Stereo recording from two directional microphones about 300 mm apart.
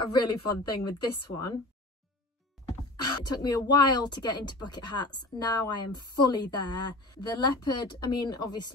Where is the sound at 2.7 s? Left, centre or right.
Centre.